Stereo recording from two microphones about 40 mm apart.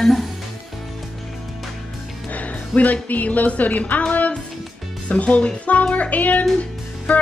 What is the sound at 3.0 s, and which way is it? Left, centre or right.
Speech, left.